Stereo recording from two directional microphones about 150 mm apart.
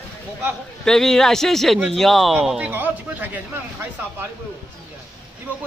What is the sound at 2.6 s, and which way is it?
Speech, 10° right (ahead or behind).